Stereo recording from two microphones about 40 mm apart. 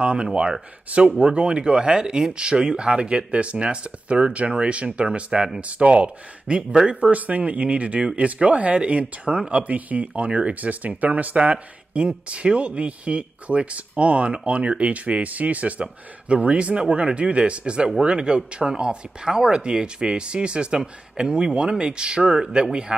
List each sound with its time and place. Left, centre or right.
0.0 s speech: right
6.9 s speech: right